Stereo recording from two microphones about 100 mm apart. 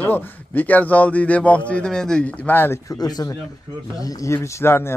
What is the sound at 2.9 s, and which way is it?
Speech, 40° left (ahead or behind).